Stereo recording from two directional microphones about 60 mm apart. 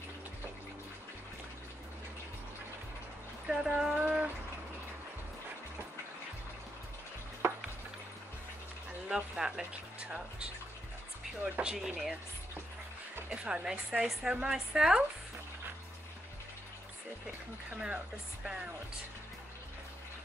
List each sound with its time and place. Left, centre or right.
3.4 s a sound: centre
7.4 s a sound: right
9.1 s speech: centre
11.8 s speech: centre
13.3 s speech: centre
14.0 s speech: centre